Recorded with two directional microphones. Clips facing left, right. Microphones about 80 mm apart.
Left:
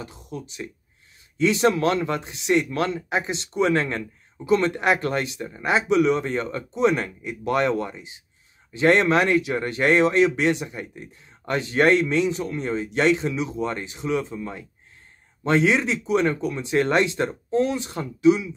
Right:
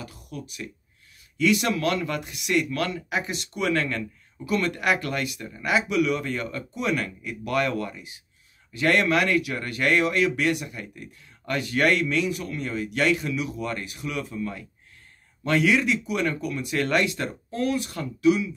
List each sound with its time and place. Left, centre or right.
0.0 s speech: left